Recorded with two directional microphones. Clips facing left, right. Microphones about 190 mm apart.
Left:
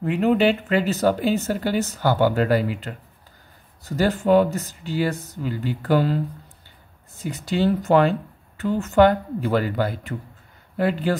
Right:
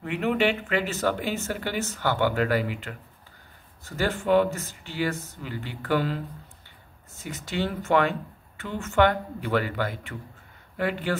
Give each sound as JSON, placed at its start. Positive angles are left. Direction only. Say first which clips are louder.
{"t": 0.0, "sound": "speech", "louder": "left 6 dB", "side_deg": 35}
{"t": 7.2, "sound": "speech", "louder": "left 8 dB", "side_deg": 35}